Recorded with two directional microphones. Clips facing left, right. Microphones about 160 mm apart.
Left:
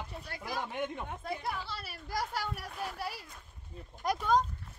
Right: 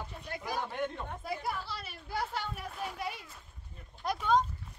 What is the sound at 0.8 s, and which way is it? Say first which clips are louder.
Speech: right 1 dB; 10° left (ahead or behind).